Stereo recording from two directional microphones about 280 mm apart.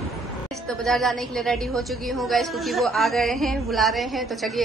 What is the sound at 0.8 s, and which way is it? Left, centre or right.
A woman's voice, centre.